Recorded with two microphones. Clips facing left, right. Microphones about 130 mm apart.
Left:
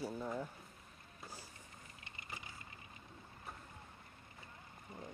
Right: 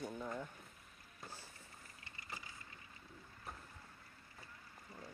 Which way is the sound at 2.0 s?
20° left (ahead or behind).